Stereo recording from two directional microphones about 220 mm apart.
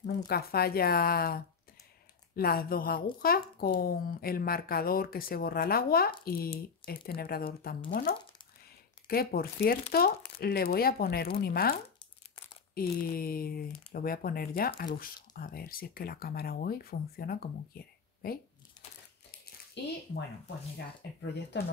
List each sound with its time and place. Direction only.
0.3 s speech: 45° left (ahead or behind)
12.7 s speech: 40° left (ahead or behind)
19.8 s speech: 50° left (ahead or behind)
21.5 s speech: 50° left (ahead or behind)